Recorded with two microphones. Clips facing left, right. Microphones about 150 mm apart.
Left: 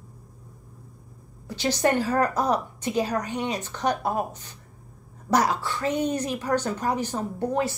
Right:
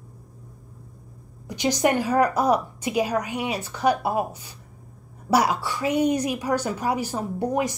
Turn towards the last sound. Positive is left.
turn(degrees=-15)  # may be behind; listen again after turning